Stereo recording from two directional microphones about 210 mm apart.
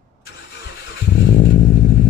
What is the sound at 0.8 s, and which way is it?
Vehicle, 55° left (ahead or behind).